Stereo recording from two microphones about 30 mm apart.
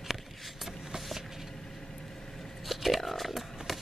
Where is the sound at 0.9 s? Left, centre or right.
Centre.